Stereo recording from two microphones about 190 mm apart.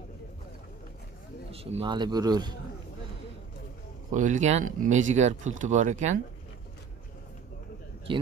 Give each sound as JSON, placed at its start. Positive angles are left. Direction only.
{"t": 1.5, "sound": "speech", "side_deg": -30}
{"t": 4.1, "sound": "speech", "side_deg": -40}